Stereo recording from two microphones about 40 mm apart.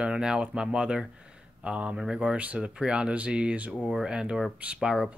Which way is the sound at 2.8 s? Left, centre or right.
Right.